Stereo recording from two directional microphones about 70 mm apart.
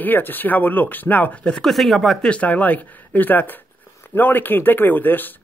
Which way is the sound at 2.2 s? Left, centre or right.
Centre.